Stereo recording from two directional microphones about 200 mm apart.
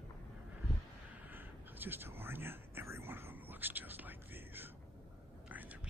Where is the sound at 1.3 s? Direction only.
10° right (ahead or behind).